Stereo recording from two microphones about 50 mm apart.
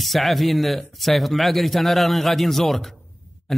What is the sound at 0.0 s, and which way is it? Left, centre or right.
A man's voice, centre.